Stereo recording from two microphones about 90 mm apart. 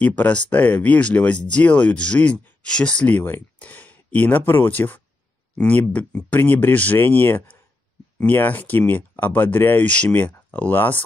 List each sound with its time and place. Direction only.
0.0 s speech: 15° left (ahead or behind)